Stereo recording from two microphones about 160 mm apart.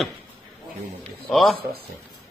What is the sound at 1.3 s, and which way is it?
Speech, centre (ahead or behind).